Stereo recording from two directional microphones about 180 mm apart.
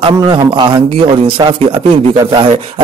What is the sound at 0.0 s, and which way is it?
Speech, 25° right (ahead or behind).